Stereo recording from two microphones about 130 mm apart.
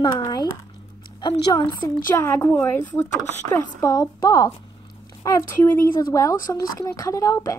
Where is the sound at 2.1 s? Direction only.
20° left (ahead or behind).